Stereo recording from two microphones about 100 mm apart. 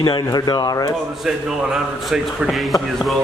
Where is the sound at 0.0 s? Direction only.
45° left (ahead or behind).